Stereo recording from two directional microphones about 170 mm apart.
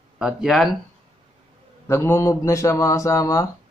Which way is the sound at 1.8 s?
15° left (ahead or behind).